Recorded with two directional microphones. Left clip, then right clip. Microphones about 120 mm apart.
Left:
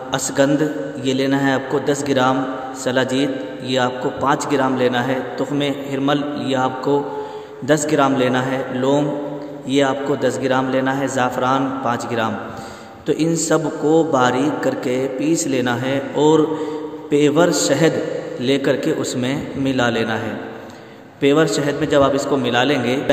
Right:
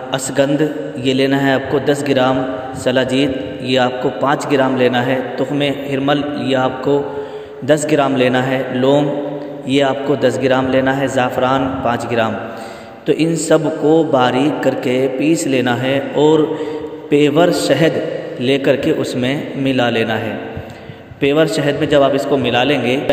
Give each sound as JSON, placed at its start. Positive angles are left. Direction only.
{"t": 0.1, "sound": "a man's voice", "side_deg": -15}